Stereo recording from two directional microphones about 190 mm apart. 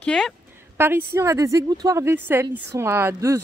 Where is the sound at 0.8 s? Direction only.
10° right (ahead or behind).